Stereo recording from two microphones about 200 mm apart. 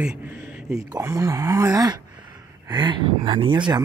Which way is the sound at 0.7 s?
15° right (ahead or behind).